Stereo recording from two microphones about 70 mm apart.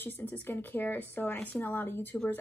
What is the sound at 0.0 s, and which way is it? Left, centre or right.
Speech, left.